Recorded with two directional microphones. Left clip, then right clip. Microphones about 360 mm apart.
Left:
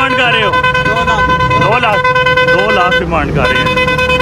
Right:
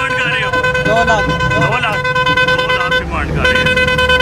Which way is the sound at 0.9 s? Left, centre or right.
Centre.